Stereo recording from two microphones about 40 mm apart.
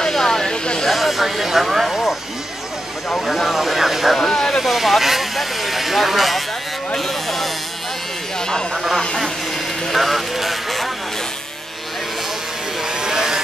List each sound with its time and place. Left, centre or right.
0.0 s a sound: centre
0.8 s snake: centre
3.1 s speech: centre
3.5 s vehicle: centre
4.3 s vehicle: centre
4.6 s vehicle: centre
7.0 s a sound: centre
9.8 s vehicle: centre
13.0 s vehicle: centre